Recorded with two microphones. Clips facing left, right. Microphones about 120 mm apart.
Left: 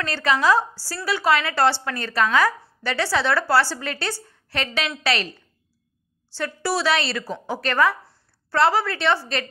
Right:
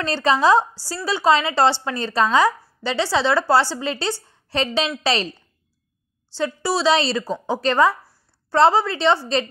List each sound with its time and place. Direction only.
0.0 s a woman's voice: 30° right (ahead or behind)
6.3 s a woman's voice: 20° right (ahead or behind)